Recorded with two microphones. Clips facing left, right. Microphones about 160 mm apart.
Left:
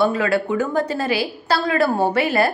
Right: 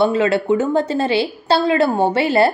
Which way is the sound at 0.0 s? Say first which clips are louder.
Right 3 dB; 25° right (ahead or behind).